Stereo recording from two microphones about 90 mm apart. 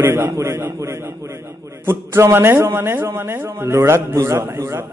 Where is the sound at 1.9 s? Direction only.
25° right (ahead or behind).